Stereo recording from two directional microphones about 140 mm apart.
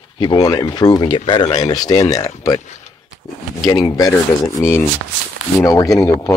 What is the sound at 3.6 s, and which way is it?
Speech, 25° left (ahead or behind).